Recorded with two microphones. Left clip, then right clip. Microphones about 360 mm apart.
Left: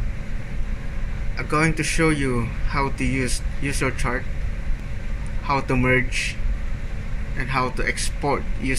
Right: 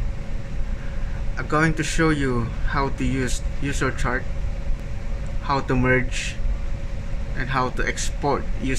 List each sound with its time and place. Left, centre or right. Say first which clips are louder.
1.3 s a man's voice: even; centre
5.5 s a man's voice: even; centre
7.3 s a man's voice: even; centre